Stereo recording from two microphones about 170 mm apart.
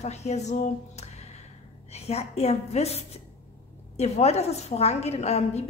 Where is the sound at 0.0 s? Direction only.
40° left (ahead or behind).